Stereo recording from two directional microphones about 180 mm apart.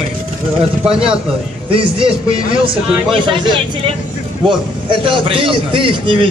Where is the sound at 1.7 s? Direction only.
30° right (ahead or behind).